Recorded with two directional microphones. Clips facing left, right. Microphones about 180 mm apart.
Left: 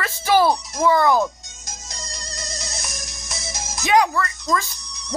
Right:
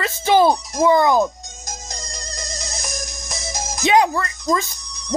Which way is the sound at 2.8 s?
40° right (ahead or behind).